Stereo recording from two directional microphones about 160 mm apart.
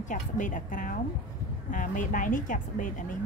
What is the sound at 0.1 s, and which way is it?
A woman's voice, 55° left (ahead or behind).